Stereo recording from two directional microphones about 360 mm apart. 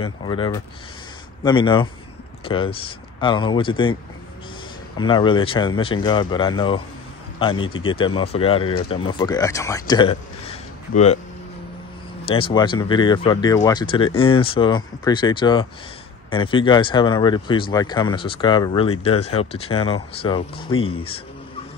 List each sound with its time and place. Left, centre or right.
0.0 s speech: centre
4.9 s speech: centre
12.3 s speech: centre